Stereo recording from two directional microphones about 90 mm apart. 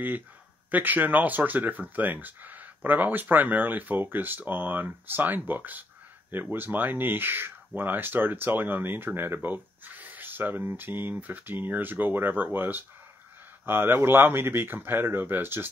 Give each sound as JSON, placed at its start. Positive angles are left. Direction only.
{"t": 0.7, "sound": "speech", "side_deg": -20}